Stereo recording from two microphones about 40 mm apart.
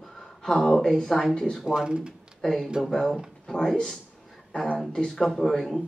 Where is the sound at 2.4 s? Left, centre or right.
Centre.